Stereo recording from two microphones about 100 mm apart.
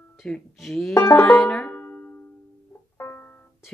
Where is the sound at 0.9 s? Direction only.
25° left (ahead or behind).